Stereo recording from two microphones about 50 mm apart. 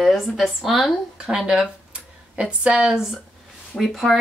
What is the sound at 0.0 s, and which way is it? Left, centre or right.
A woman's voice, centre.